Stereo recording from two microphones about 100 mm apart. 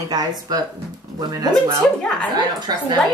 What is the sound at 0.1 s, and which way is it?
Speech, 40° right (ahead or behind).